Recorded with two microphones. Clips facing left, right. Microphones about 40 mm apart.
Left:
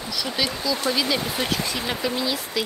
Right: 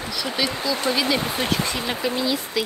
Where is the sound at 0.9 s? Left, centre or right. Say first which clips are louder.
Right 2 dB; centre.